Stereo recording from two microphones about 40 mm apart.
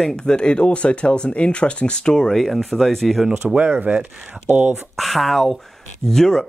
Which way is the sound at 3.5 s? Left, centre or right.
Right.